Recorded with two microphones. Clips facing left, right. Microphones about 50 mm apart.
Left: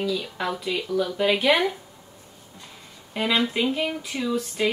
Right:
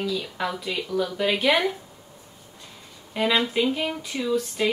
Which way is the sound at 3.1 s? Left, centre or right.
Centre.